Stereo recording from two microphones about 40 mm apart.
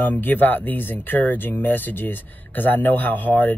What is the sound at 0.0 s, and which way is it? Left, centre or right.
Speech, left.